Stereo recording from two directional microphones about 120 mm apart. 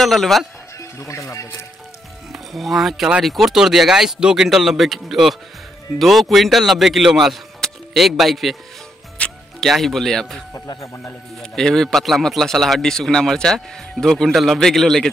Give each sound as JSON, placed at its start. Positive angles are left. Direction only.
{"t": 0.0, "sound": "speech", "side_deg": 0}
{"t": 0.7, "sound": "music", "side_deg": 25}
{"t": 2.3, "sound": "speech", "side_deg": 0}
{"t": 10.5, "sound": "speech", "side_deg": 25}
{"t": 11.5, "sound": "speech", "side_deg": 5}